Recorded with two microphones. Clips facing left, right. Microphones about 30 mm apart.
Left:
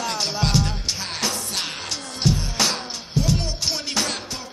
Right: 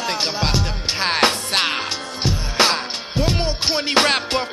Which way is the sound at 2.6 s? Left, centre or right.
Right.